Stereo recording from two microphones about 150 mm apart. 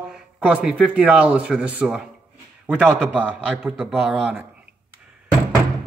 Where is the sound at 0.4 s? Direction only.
10° right (ahead or behind).